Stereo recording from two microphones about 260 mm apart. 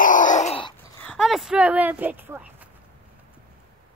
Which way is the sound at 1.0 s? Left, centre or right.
Centre.